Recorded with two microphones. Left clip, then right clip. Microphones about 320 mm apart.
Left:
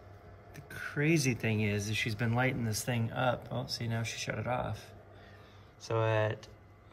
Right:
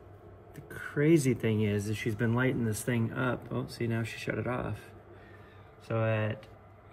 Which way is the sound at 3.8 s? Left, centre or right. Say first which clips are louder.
Right 2 dB; right.